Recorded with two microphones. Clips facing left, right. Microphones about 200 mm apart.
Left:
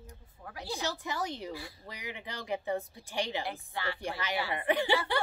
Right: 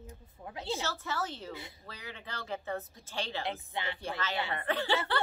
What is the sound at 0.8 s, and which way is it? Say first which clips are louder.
Speech: left 1 dB; 15° left (ahead or behind).